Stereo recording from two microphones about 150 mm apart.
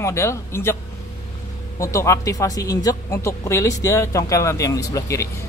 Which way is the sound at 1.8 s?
20° left (ahead or behind).